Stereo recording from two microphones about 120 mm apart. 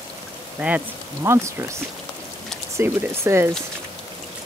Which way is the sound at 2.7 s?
20° right (ahead or behind).